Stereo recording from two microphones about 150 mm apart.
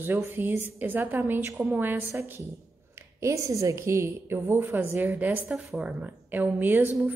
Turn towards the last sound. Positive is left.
turn(degrees=-10)  # may be behind; listen again after turning